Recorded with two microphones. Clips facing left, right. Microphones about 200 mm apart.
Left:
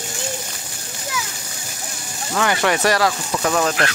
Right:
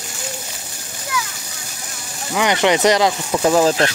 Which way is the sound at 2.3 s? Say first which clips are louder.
Right 3 dB; 20° right (ahead or behind).